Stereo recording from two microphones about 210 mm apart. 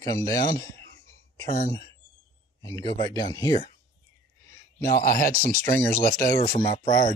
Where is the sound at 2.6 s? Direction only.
20° left (ahead or behind).